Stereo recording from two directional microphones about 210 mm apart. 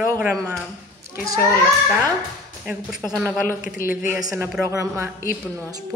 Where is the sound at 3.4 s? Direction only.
40° left (ahead or behind).